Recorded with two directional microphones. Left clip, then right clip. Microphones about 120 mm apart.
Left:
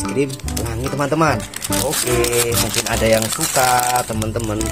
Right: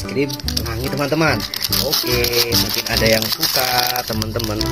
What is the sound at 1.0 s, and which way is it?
Speech, 15° left (ahead or behind).